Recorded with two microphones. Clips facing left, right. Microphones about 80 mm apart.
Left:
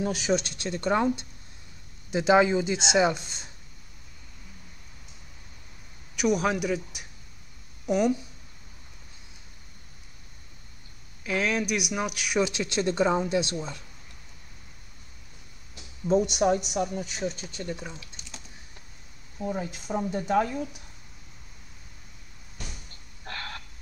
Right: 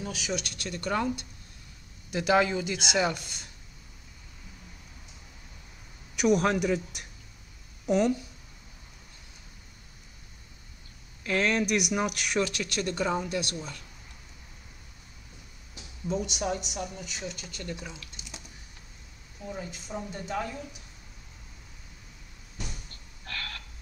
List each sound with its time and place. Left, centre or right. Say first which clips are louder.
0.0 s speech: left 7 dB; left
6.1 s speech: right 1 dB; centre
11.2 s speech: right 1 dB; centre
12.4 s speech: left 4 dB; centre
16.1 s speech: left 8 dB; left
19.4 s speech: left 7 dB; left
23.2 s a sound: left 2 dB; left